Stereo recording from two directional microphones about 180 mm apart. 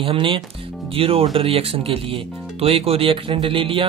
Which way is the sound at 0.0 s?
30° right (ahead or behind).